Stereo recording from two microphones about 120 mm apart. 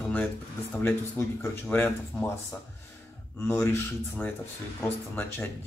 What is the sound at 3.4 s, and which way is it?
Speech, 20° left (ahead or behind).